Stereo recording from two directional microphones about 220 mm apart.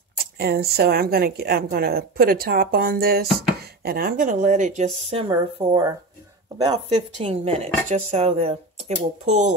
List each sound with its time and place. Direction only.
0.2 s a woman's voice: 45° right (ahead or behind); by 5.9 s 20° right (ahead or behind)
7.2 s speech: 25° right (ahead or behind)